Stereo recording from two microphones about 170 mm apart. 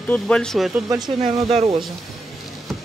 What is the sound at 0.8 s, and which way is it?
Speech, 20° right (ahead or behind).